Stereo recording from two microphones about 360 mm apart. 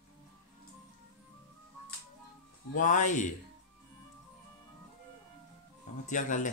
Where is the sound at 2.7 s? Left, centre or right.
Left.